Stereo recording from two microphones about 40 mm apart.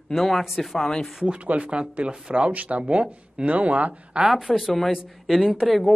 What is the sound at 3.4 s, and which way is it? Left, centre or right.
Speech, right.